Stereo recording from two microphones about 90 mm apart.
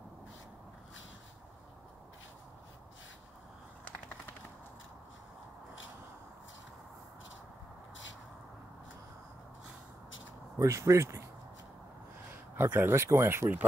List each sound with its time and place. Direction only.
10.6 s speech: 35° right (ahead or behind)
12.5 s speech: 20° right (ahead or behind)